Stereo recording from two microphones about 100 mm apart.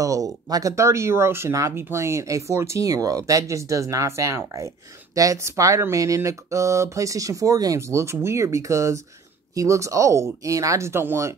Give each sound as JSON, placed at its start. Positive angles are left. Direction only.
{"t": 0.0, "sound": "speech", "side_deg": -35}